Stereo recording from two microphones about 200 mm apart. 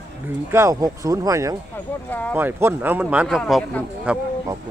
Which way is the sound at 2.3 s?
10° right (ahead or behind).